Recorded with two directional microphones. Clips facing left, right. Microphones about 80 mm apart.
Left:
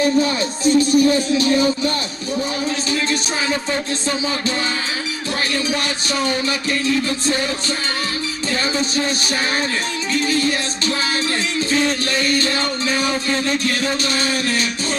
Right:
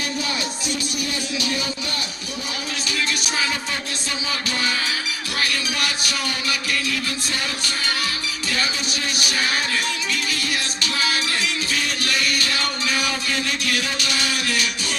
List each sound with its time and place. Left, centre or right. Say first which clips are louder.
0.0 s speech: left 10 dB; left
8.7 s music: left 7 dB; left
11.7 s music: left 9 dB; left